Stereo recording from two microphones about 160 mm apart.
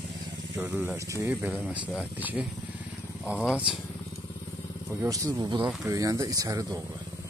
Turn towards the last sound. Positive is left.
turn(degrees=-20)  # may be behind; listen again after turning